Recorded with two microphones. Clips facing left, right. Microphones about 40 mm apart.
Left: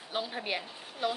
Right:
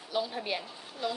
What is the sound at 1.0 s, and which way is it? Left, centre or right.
Speech, left.